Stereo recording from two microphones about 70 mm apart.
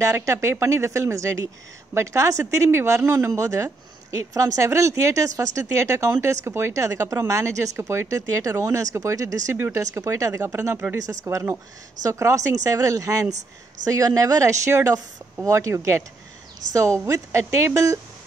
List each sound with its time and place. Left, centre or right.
0.0 s speech: right
8.2 s speech: right
9.5 s speech: right
9.8 s speech: right